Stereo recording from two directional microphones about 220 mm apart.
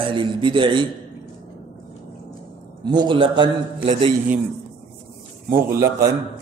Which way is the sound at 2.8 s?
20° right (ahead or behind).